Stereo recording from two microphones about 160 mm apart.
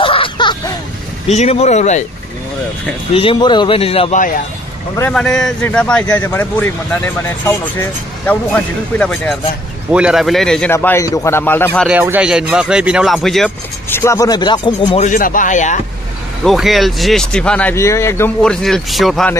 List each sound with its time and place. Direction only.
0.0 s a sound: 35° left (ahead or behind)
1.3 s speech: 40° left (ahead or behind)
3.1 s speech: 35° left (ahead or behind)
5.1 s speech: 5° left (ahead or behind)
8.3 s speech: 10° left (ahead or behind)
9.8 s speech: 5° right (ahead or behind)
10.7 s speech: 15° left (ahead or behind)
11.9 s speech: 10° right (ahead or behind)
13.8 s speech: 15° left (ahead or behind)
15.0 s speech: 55° left (ahead or behind)
16.4 s speech: centre (ahead or behind); by 18.3 s 15° left (ahead or behind)
18.4 s speech: 5° left (ahead or behind)